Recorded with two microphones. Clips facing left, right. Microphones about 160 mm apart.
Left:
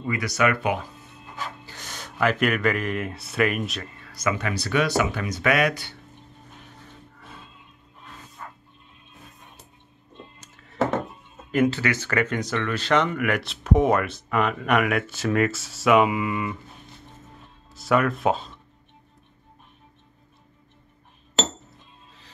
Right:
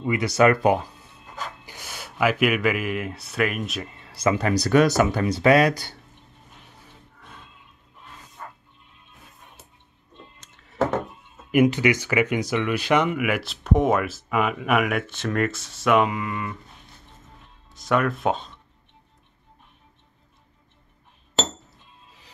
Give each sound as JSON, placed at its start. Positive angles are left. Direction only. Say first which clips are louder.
{"t": 0.0, "sound": "speech", "louder": "right 5 dB", "side_deg": -25}
{"t": 1.7, "sound": "speech", "louder": "even", "side_deg": -10}
{"t": 3.8, "sound": "speech", "louder": "right 4 dB", "side_deg": -25}
{"t": 7.2, "sound": "a sound", "louder": "even", "side_deg": 5}
{"t": 10.4, "sound": "a sound", "louder": "left 3 dB", "side_deg": 5}
{"t": 11.5, "sound": "speech", "louder": "right 3 dB", "side_deg": -15}
{"t": 17.6, "sound": "speech", "louder": "left 1 dB", "side_deg": 5}